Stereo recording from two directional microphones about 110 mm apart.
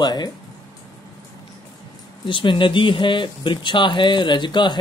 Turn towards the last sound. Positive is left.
turn(degrees=45)  # may be behind; listen again after turning